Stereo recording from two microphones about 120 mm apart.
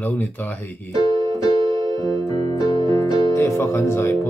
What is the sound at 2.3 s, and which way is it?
Keyboard, 30° left (ahead or behind).